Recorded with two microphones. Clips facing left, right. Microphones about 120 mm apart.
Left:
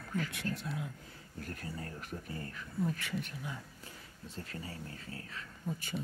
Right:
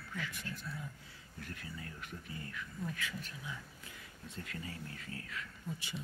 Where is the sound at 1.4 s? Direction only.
40° left (ahead or behind).